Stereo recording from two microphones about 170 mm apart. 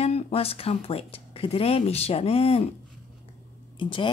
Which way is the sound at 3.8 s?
30° left (ahead or behind).